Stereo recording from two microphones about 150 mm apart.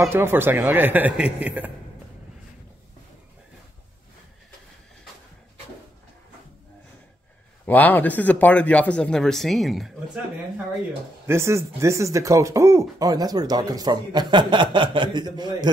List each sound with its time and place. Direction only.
0.0 s speech: 15° right (ahead or behind)
7.6 s speech: 10° left (ahead or behind)
11.2 s speech: 20° right (ahead or behind)